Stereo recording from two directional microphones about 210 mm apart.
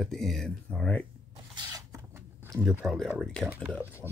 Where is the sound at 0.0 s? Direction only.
Centre (ahead or behind).